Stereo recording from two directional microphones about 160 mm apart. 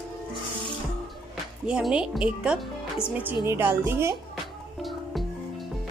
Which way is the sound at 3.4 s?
15° right (ahead or behind).